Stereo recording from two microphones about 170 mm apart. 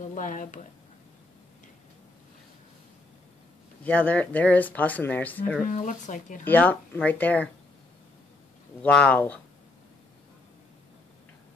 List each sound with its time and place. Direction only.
0.0 s speech: 45° left (ahead or behind)
3.8 s speech: 10° left (ahead or behind)
5.7 s speech: 45° left (ahead or behind)
6.4 s speech: 10° left (ahead or behind)
8.8 s speech: 5° left (ahead or behind)